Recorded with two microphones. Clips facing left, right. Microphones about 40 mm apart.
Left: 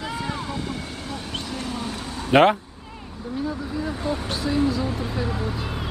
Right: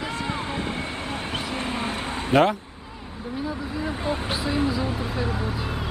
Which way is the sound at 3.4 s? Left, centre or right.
Centre.